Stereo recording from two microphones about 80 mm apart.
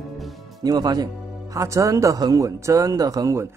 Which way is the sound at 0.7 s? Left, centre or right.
Right.